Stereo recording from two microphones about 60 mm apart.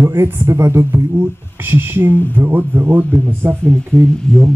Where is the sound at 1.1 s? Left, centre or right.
Right.